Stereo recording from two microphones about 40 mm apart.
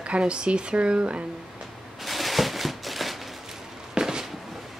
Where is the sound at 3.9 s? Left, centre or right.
Centre.